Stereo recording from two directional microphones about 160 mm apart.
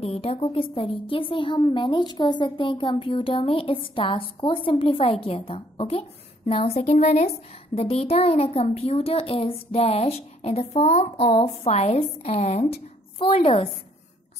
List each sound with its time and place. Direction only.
0.0 s a woman's voice: 40° left (ahead or behind)